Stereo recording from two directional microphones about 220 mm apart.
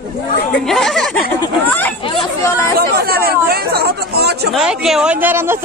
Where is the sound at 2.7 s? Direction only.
45° right (ahead or behind).